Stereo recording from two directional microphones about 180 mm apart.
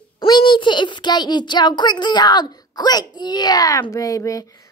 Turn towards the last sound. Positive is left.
turn(degrees=20)  # may be behind; listen again after turning